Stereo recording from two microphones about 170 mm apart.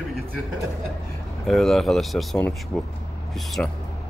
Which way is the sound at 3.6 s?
5° left (ahead or behind).